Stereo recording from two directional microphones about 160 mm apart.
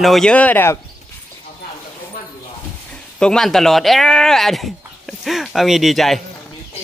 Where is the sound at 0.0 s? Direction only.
Centre (ahead or behind).